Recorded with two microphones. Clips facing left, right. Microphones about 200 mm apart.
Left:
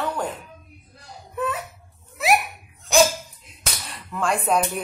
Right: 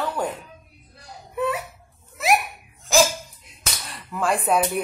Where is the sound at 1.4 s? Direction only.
10° right (ahead or behind).